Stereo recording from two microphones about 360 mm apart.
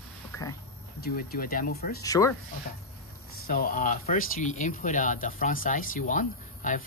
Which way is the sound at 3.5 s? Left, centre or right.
Left.